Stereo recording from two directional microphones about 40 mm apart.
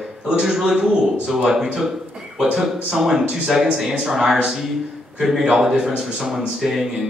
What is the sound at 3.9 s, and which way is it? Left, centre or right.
Speech, centre.